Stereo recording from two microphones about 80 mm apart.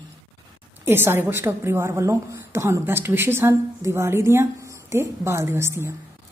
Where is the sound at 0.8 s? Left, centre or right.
Right.